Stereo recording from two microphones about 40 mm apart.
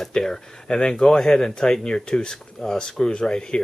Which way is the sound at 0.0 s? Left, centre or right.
Centre.